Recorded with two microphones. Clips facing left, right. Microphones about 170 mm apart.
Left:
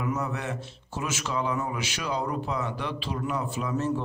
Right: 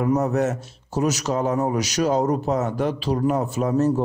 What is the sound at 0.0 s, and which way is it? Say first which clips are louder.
A man's voice: right 10 dB; 45° right (ahead or behind).